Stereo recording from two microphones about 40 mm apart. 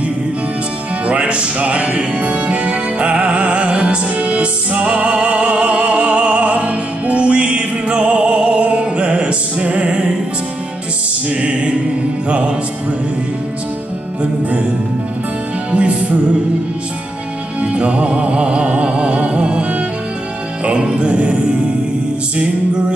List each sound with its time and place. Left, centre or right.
1.0 s music: right
11.2 s music: right
15.7 s music: right
17.6 s music: right